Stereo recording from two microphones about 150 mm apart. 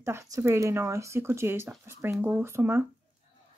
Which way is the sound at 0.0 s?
20° right (ahead or behind).